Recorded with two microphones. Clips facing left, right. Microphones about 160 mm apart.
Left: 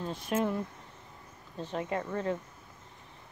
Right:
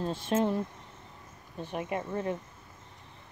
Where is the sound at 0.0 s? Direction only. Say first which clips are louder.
Right 3 dB; 30° right (ahead or behind).